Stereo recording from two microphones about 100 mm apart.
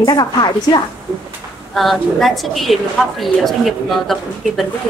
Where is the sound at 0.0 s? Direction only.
40° left (ahead or behind).